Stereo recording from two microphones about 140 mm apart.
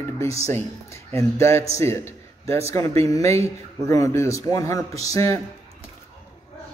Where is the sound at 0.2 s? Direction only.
20° left (ahead or behind).